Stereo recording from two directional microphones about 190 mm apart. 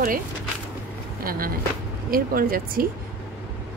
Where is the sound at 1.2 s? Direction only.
50° right (ahead or behind).